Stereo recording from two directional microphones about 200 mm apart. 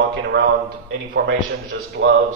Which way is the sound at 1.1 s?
65° right (ahead or behind).